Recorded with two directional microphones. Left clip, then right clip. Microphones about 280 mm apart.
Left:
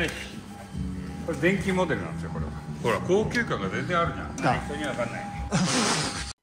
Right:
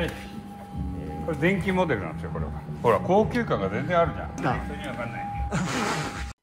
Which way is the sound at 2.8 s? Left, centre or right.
Centre.